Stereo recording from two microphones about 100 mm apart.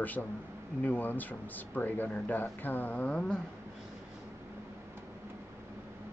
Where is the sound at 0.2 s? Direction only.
15° left (ahead or behind).